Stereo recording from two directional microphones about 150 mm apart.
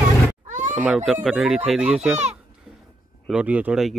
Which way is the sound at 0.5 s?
55° right (ahead or behind).